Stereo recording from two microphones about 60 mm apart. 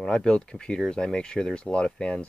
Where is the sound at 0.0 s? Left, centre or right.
Centre.